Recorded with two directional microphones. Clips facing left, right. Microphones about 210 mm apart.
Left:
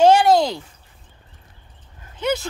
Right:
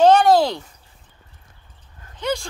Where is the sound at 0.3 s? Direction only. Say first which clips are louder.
Right 1 dB; centre (ahead or behind).